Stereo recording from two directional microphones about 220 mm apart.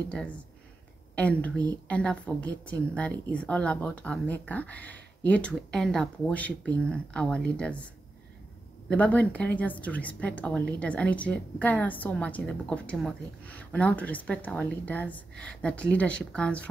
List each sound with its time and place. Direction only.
1.1 s speech: 5° left (ahead or behind)
8.8 s a woman's voice: 5° left (ahead or behind)